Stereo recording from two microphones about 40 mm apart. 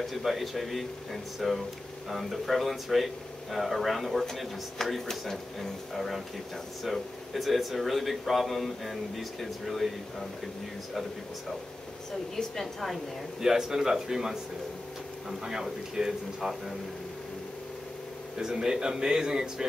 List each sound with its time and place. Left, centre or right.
0.0 s speech: centre
13.4 s speech: centre
18.4 s speech: centre